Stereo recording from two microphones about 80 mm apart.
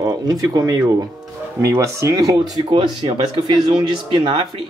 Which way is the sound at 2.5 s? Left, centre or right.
Right.